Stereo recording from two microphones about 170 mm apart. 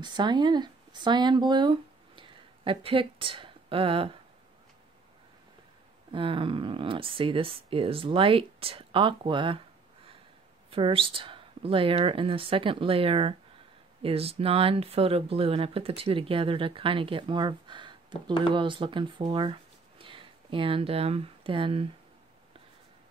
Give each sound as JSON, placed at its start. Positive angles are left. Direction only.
{"t": 0.0, "sound": "speech", "side_deg": -25}
{"t": 6.1, "sound": "speech", "side_deg": -30}
{"t": 10.7, "sound": "speech", "side_deg": -30}